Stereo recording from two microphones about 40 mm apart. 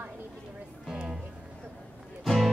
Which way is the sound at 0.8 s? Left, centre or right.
Centre.